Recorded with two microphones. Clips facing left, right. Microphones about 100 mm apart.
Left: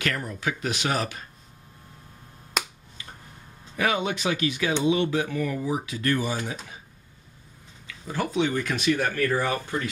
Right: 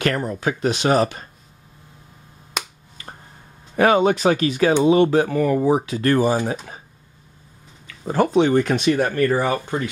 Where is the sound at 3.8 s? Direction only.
40° right (ahead or behind).